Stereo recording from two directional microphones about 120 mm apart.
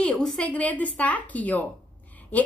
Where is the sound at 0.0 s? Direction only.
10° left (ahead or behind).